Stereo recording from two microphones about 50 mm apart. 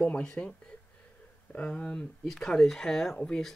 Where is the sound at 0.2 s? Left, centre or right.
Centre.